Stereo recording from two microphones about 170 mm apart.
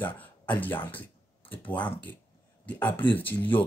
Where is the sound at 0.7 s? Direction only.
10° left (ahead or behind).